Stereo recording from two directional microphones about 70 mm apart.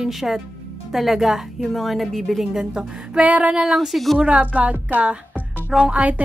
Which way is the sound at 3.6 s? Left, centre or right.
Centre.